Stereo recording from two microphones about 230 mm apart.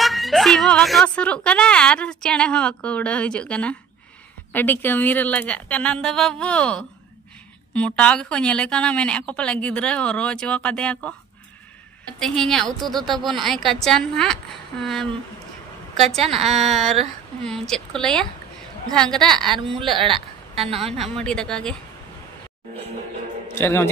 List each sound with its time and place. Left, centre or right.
0.0 s speech: centre
12.2 s speech: centre
16.2 s a woman's voice: right
16.6 s speech: centre
19.8 s a woman's voice: right
21.1 s speech: centre
23.5 s a man's voice: centre